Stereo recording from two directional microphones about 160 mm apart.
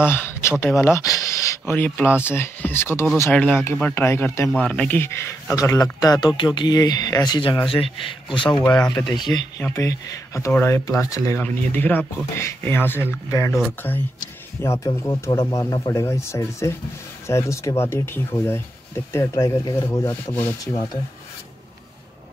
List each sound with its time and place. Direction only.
0.0 s speech: 15° left (ahead or behind)
4.5 s a man's voice: 5° left (ahead or behind); by 8.5 s 30° left (ahead or behind)
8.6 s speech: 5° left (ahead or behind)
9.1 s speech: 25° left (ahead or behind)
9.6 s speech: 15° left (ahead or behind)
13.5 s speech: centre (ahead or behind)
14.6 s speech: 20° left (ahead or behind)